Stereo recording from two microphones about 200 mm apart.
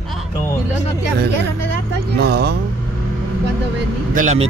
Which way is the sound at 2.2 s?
50° right (ahead or behind).